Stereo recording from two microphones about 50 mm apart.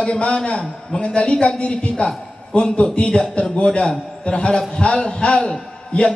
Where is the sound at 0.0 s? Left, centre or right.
Centre.